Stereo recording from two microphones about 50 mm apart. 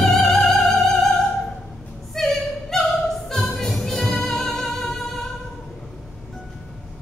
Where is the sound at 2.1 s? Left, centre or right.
Centre.